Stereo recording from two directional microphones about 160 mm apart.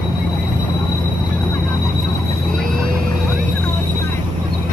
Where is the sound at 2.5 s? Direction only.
60° right (ahead or behind).